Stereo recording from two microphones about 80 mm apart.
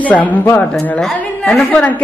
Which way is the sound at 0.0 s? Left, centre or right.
Centre.